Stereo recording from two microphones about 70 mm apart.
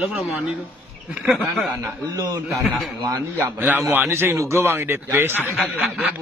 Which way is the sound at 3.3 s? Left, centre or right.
Right.